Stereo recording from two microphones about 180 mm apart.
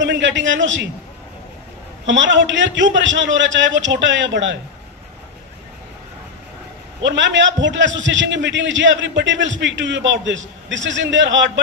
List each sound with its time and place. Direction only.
0.0 s a man's voice: 85° right
2.0 s a man's voice: 90° right
7.0 s a man's voice: 85° right